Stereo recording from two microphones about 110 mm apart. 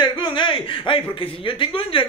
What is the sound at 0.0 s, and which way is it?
Speech, 45° left (ahead or behind).